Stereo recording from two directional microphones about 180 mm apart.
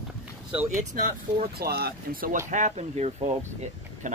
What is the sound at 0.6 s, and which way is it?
Speech, 45° right (ahead or behind).